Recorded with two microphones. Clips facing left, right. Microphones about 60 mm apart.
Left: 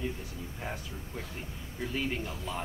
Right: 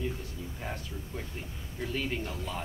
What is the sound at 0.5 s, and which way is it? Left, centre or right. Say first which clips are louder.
Speech: even; centre.